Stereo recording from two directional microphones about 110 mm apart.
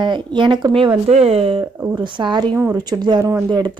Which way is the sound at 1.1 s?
70° right (ahead or behind).